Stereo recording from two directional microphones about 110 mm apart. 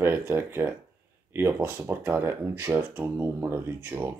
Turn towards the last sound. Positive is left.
turn(degrees=-20)  # may be behind; listen again after turning